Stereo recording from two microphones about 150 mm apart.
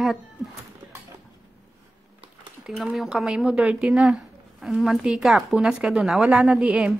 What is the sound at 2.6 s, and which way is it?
A woman's voice, centre (ahead or behind).